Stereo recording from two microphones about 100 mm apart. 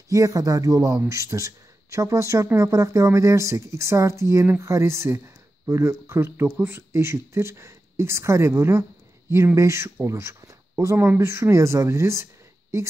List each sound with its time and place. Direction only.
0.1 s a man's voice: 35° right (ahead or behind)